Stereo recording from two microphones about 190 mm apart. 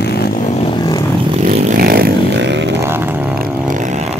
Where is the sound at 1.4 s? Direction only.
40° right (ahead or behind); by 2.8 s 65° right (ahead or behind).